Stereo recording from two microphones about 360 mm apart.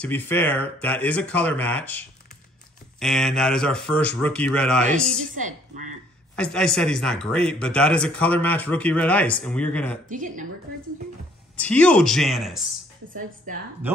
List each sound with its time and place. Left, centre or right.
0.0 s speech: centre
5.3 s a woman's voice: right
6.3 s speech: centre
10.0 s a woman's voice: right
11.5 s speech: centre
13.5 s a woman's voice: right